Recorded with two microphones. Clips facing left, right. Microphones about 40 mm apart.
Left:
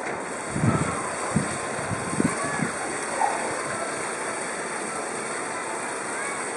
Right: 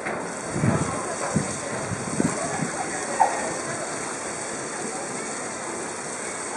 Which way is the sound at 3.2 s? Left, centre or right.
Centre.